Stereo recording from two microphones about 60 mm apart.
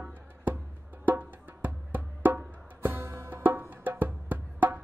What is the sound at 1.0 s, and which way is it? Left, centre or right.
Music, right.